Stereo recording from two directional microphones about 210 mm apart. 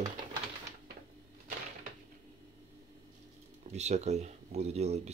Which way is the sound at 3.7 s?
35° right (ahead or behind).